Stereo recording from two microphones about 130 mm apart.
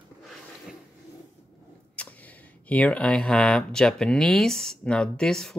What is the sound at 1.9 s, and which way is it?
Speech, 10° left (ahead or behind).